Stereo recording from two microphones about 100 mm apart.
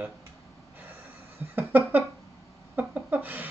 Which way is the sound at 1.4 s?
20° right (ahead or behind).